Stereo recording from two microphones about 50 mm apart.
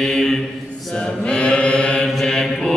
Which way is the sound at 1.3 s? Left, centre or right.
Centre.